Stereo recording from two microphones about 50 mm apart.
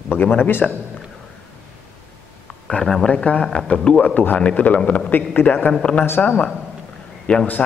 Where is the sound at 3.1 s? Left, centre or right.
Left.